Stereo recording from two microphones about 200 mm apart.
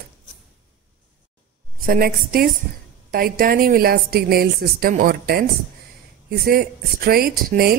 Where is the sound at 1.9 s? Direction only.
45° right (ahead or behind).